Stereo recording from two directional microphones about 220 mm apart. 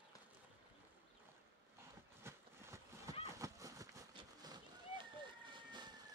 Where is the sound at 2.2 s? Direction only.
10° right (ahead or behind).